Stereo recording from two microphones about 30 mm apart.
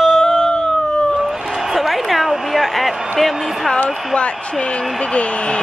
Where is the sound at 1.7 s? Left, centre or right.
Centre.